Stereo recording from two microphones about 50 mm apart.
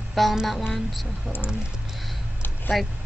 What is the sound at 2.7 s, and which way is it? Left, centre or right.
Speech, centre.